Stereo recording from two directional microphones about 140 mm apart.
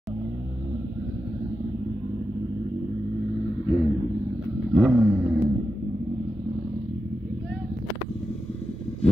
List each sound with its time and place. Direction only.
3.6 s vehicle: 55° left (ahead or behind)
4.7 s vehicle: 5° right (ahead or behind)